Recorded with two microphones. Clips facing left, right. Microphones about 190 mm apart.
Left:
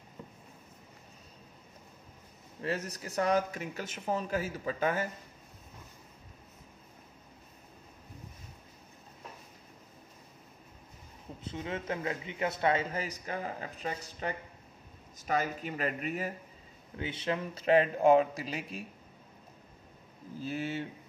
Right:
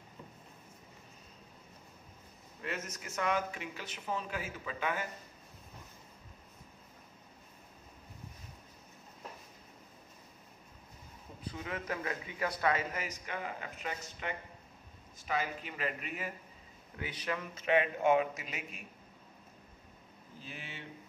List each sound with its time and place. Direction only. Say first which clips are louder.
2.6 s speech: left 6 dB; 35° left (ahead or behind)
11.4 s speech: left 3 dB; 25° left (ahead or behind); by 16.3 s 40° left (ahead or behind)
17.0 s speech: left 5 dB; 25° left (ahead or behind)
20.4 s speech: left 14 dB; 40° left (ahead or behind)